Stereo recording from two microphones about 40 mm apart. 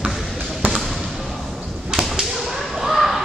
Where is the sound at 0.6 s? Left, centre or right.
Right.